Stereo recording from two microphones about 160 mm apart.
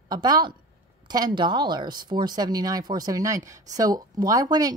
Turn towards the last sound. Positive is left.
turn(degrees=-25)  # may be behind; listen again after turning